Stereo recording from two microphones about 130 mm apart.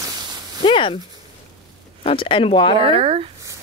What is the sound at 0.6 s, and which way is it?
Speech, 40° left (ahead or behind).